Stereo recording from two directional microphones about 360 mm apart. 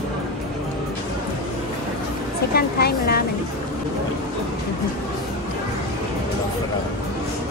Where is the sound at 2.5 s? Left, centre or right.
Left.